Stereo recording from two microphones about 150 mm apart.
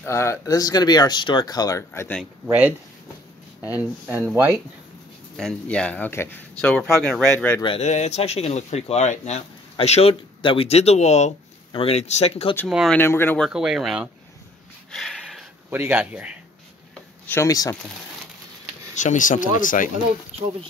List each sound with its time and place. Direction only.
0.0 s speech: 15° left (ahead or behind)
4.1 s speech: 15° right (ahead or behind)
5.4 s speech: 5° left (ahead or behind)
7.6 s speech: 40° left (ahead or behind)
12.6 s speech: centre (ahead or behind)
12.9 s speech: 15° left (ahead or behind)
13.4 s speech: 5° right (ahead or behind)
14.9 s a sound: 5° left (ahead or behind)
15.7 s speech: 10° right (ahead or behind)
17.3 s speech: 20° left (ahead or behind)
18.9 s speech: 55° left (ahead or behind)